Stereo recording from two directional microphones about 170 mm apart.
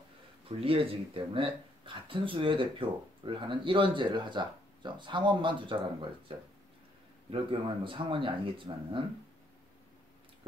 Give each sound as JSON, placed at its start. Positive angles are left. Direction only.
{"t": 0.5, "sound": "speech", "side_deg": -35}